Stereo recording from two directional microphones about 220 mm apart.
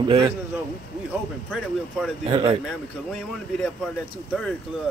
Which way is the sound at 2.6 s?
Centre (ahead or behind).